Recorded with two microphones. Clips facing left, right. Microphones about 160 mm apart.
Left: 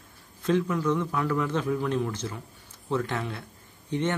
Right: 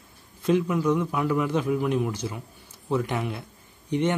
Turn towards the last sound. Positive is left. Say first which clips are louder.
# right 3 dB
turn(degrees=-15)  # may be behind; listen again after turning